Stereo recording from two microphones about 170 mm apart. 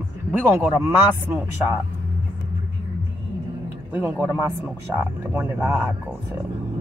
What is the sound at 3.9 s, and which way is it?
Speech, 10° right (ahead or behind).